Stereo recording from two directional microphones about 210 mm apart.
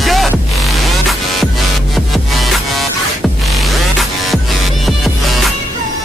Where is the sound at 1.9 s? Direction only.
Centre (ahead or behind).